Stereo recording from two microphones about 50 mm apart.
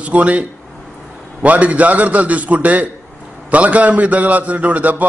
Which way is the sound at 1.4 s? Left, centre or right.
Right.